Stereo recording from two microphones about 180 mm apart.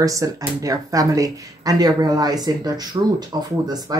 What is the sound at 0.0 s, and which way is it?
Speech, 20° right (ahead or behind).